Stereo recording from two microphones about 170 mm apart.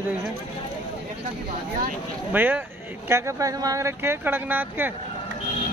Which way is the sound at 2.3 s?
10° right (ahead or behind).